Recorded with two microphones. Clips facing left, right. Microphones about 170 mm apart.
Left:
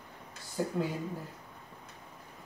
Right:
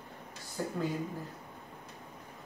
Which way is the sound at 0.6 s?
10° left (ahead or behind).